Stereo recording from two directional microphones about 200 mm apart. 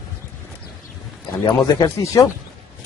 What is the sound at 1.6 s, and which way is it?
Speech, 15° left (ahead or behind).